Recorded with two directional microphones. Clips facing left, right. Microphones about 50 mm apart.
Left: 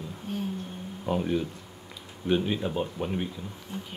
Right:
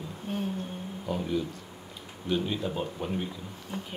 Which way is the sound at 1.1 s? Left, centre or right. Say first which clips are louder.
Left 3 dB; left.